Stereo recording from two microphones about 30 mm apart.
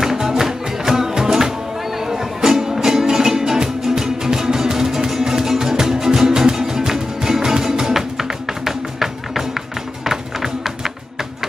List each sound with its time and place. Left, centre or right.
0.0 s music: centre